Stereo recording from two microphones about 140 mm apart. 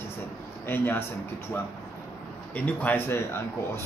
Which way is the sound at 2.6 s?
10° left (ahead or behind).